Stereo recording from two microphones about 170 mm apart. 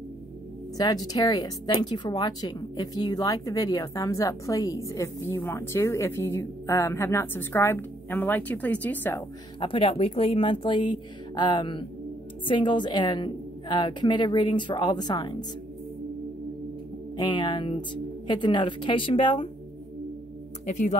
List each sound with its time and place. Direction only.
0.7 s speech: 20° left (ahead or behind)
9.6 s a woman's voice: 30° left (ahead or behind)
17.2 s a woman's voice: 25° left (ahead or behind)
20.6 s speech: 45° left (ahead or behind)